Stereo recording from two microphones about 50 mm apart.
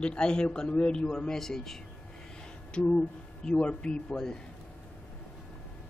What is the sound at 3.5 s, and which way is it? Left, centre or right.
Speech, left.